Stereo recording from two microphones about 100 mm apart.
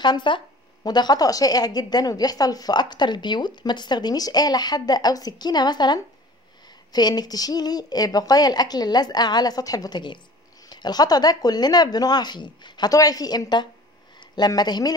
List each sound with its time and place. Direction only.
0.0 s a woman's voice: 50° left (ahead or behind)